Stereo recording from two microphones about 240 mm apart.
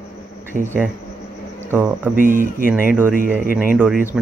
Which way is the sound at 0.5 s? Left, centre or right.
Right.